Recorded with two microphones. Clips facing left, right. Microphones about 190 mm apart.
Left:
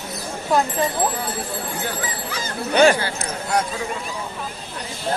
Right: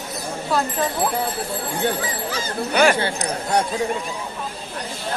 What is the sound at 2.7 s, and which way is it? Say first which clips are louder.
Speech: left 3 dB; 30° left (ahead or behind).